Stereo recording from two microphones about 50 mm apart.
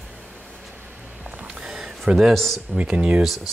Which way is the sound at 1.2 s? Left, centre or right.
Right.